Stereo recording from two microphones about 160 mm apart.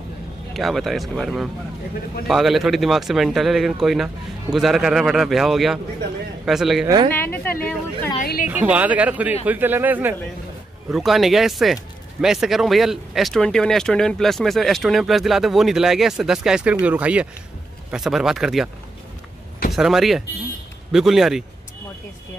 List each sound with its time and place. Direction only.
0.6 s speech: centre (ahead or behind)
7.1 s a woman's voice: 10° left (ahead or behind)
8.2 s a woman's voice: 60° left (ahead or behind)
8.5 s speech: 10° right (ahead or behind)
10.9 s speech: centre (ahead or behind)
19.7 s speech: centre (ahead or behind)